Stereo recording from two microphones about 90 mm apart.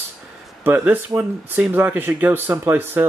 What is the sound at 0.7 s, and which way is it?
Speech, 20° right (ahead or behind).